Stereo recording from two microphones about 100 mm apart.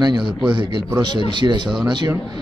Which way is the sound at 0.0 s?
40° right (ahead or behind).